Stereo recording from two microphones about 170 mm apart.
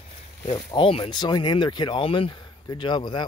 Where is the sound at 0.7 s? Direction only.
35° left (ahead or behind).